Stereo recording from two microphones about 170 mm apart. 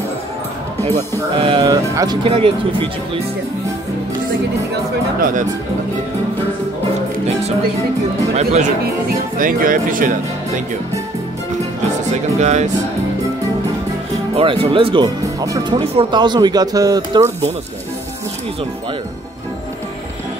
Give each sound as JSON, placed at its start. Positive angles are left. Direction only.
{"t": 1.4, "sound": "speech", "side_deg": -25}
{"t": 8.4, "sound": "speech", "side_deg": -40}
{"t": 9.4, "sound": "speech", "side_deg": -55}
{"t": 12.1, "sound": "speech", "side_deg": -45}
{"t": 14.3, "sound": "speech", "side_deg": -30}
{"t": 15.4, "sound": "speech", "side_deg": -20}
{"t": 15.8, "sound": "speech", "side_deg": -30}